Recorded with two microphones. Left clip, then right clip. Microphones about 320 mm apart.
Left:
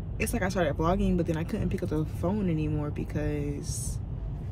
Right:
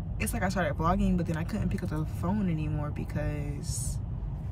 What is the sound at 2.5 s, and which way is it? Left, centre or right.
Speech, right.